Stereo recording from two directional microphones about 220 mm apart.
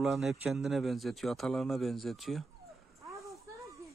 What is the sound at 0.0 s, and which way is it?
A man's voice, centre (ahead or behind).